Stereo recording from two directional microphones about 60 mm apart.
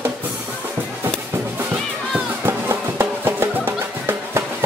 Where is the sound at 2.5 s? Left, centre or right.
Right.